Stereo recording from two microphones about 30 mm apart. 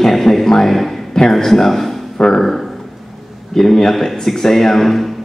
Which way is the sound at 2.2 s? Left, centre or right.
Left.